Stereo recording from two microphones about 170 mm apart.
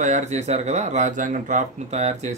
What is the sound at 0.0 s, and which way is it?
Speech, 45° right (ahead or behind).